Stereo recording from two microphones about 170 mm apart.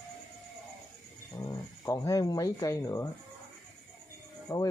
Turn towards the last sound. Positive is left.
turn(degrees=20)  # may be behind; listen again after turning